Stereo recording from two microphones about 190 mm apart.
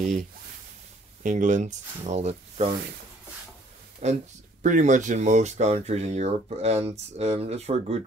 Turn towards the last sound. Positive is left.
turn(degrees=-35)  # may be behind; listen again after turning